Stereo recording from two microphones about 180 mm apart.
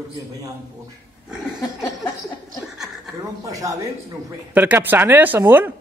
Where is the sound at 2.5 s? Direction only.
Centre (ahead or behind).